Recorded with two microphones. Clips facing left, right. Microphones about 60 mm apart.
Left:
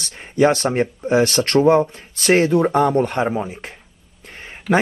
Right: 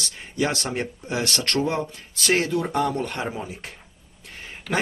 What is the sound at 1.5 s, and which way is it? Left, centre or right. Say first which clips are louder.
Speech: left 13 dB; left.